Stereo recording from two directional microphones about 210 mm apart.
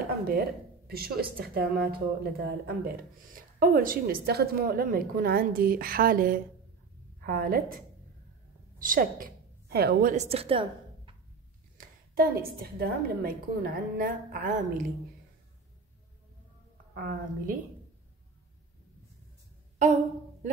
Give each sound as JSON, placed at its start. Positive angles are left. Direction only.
{"t": 0.0, "sound": "a woman's voice", "side_deg": -45}
{"t": 10.1, "sound": "a woman's voice", "side_deg": -30}
{"t": 12.2, "sound": "a woman's voice", "side_deg": -45}
{"t": 16.9, "sound": "a woman's voice", "side_deg": -40}
{"t": 19.8, "sound": "a woman's voice", "side_deg": -35}